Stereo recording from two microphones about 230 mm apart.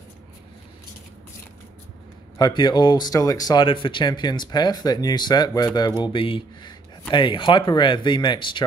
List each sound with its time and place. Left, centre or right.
2.3 s speech: centre